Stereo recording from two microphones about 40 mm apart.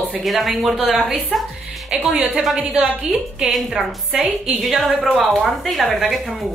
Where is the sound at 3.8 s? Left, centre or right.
Centre.